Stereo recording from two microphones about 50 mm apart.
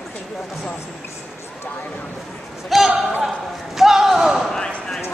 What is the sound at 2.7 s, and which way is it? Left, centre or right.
Speech, centre.